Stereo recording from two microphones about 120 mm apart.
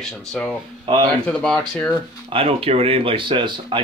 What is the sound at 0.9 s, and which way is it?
Speech, 45° right (ahead or behind).